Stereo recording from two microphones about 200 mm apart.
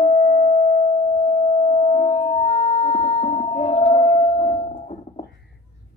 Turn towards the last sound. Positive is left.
turn(degrees=35)  # may be behind; listen again after turning